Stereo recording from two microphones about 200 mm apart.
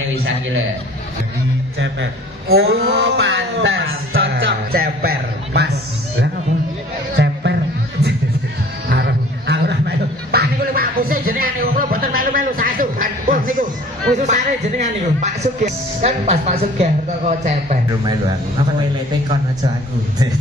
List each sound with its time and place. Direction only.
1.8 s a man's voice: 60° right (ahead or behind); by 4.2 s 75° right (ahead or behind)
4.3 s music: 50° right (ahead or behind)
8.0 s music: 55° right (ahead or behind)
8.8 s a sound: 55° right (ahead or behind)
14.1 s speech: 40° right (ahead or behind)